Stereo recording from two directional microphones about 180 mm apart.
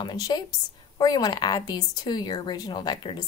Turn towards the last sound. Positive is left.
turn(degrees=25)  # may be behind; listen again after turning